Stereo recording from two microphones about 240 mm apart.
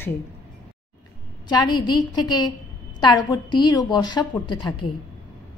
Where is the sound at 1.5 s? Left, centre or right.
Centre.